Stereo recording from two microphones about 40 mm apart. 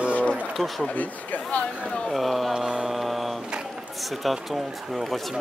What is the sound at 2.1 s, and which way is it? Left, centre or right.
Speech, centre.